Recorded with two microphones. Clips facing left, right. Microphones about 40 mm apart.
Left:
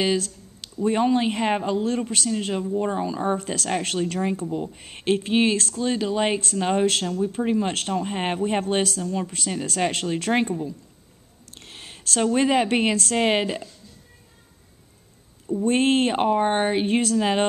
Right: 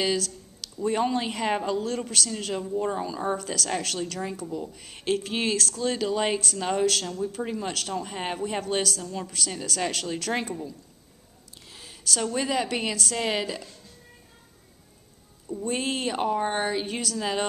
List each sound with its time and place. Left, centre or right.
0.0 s a sound: left
1.1 s speech: left
6.2 s speech: left
11.5 s a woman's voice: left
15.6 s speech: left